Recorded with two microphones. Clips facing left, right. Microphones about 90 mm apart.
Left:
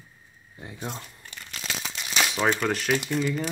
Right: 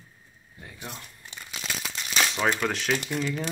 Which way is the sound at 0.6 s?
20° left (ahead or behind).